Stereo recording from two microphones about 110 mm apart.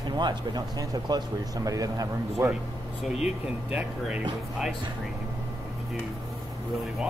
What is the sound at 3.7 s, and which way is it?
Speech, 10° right (ahead or behind).